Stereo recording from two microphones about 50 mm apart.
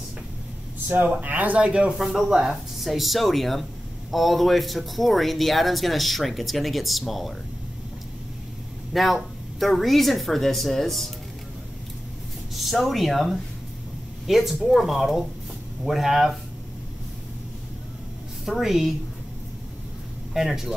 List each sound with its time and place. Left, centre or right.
0.8 s speech: right
2.0 s speech: centre
8.9 s speech: centre
12.5 s speech: centre
18.4 s speech: centre
20.3 s speech: centre